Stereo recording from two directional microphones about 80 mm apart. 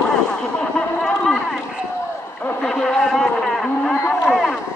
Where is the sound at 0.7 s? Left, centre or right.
Centre.